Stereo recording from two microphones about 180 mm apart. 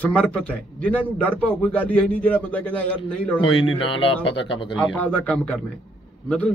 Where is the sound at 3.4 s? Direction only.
90° left.